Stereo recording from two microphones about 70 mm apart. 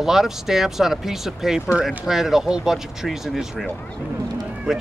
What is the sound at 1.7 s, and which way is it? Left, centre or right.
Speech, centre.